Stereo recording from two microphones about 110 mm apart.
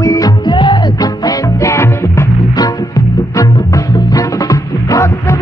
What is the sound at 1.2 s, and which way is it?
Music, 25° left (ahead or behind).